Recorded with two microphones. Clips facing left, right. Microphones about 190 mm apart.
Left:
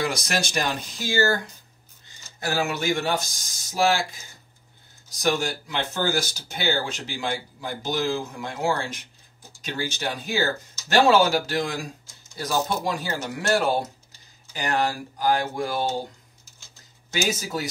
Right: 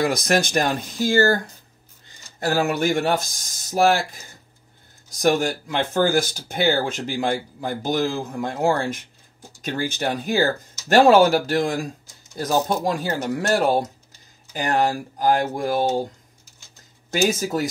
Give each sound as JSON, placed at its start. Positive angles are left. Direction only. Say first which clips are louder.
{"t": 0.0, "sound": "speech", "louder": "right 6 dB", "side_deg": -55}
{"t": 2.5, "sound": "speech", "louder": "right 4 dB", "side_deg": -55}
{"t": 5.2, "sound": "speech", "louder": "right 5 dB", "side_deg": -50}
{"t": 15.3, "sound": "speech", "louder": "right 4 dB", "side_deg": -50}
{"t": 17.3, "sound": "speech", "louder": "right 5 dB", "side_deg": -50}